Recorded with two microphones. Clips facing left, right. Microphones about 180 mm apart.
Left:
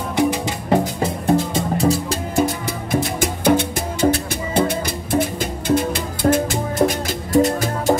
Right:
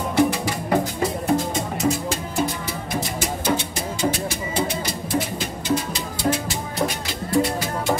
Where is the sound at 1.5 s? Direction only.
35° left (ahead or behind).